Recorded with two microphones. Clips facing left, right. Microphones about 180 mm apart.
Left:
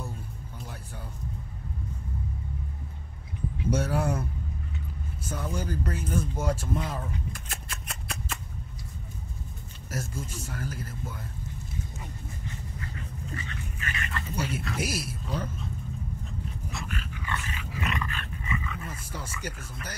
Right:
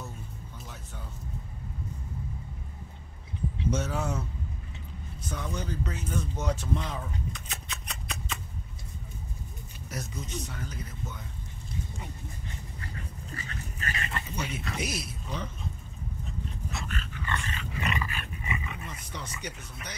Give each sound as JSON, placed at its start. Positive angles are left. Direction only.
{"t": 3.7, "sound": "speech", "side_deg": 10}
{"t": 5.3, "sound": "speech", "side_deg": 5}
{"t": 7.9, "sound": "shuffling cards", "side_deg": 5}
{"t": 9.9, "sound": "speech", "side_deg": 5}
{"t": 13.3, "sound": "dog", "side_deg": -40}
{"t": 14.3, "sound": "speech", "side_deg": 5}
{"t": 16.8, "sound": "dog", "side_deg": 10}
{"t": 18.9, "sound": "speech", "side_deg": 5}